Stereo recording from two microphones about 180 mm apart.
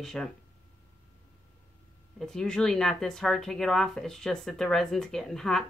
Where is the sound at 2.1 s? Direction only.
5° left (ahead or behind).